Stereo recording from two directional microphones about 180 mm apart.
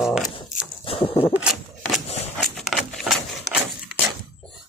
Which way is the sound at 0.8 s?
30° left (ahead or behind).